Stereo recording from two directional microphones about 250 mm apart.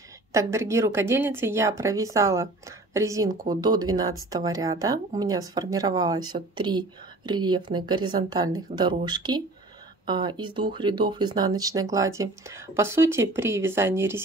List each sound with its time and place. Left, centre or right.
0.3 s speech: centre